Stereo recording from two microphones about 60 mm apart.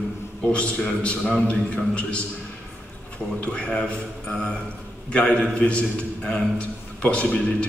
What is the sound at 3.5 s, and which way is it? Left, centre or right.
Speech, centre.